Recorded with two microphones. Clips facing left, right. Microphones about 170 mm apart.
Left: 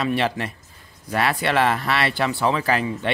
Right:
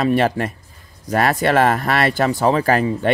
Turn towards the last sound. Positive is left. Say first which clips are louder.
# right 6 dB
turn(degrees=-45)  # may be behind; listen again after turning